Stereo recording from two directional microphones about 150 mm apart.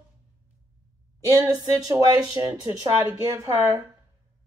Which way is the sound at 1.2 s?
25° right (ahead or behind).